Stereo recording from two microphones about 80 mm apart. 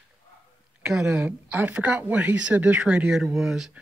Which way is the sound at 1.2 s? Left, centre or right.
Right.